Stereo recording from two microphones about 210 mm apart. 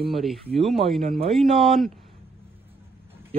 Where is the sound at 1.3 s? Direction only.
Centre (ahead or behind).